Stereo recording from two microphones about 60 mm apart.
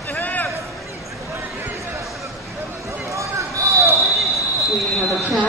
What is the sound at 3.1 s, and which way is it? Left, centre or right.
Basketball bounce, right.